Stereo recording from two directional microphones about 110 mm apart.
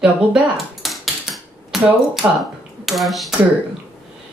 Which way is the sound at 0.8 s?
Centre (ahead or behind).